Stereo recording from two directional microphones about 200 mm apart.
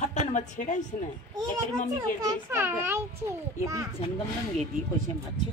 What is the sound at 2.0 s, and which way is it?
A child's voice, 15° right (ahead or behind).